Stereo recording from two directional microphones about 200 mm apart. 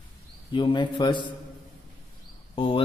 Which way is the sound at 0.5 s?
25° left (ahead or behind).